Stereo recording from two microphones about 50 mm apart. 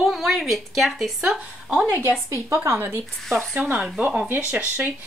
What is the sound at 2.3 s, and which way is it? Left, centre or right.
Speech, right.